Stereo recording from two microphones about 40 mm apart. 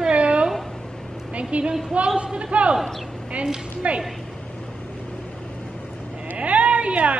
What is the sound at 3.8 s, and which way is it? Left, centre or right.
Speech, right.